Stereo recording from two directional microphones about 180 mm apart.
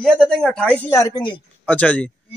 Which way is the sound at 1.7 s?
10° left (ahead or behind).